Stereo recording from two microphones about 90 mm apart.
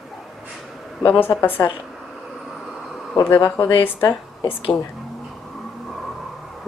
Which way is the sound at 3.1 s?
25° left (ahead or behind).